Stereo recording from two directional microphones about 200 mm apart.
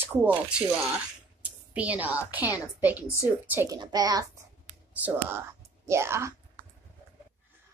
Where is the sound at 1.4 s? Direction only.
5° right (ahead or behind).